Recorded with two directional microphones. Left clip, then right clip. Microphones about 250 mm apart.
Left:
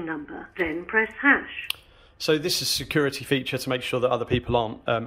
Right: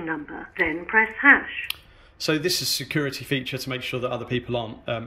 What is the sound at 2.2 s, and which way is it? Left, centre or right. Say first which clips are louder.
Speech: even; centre.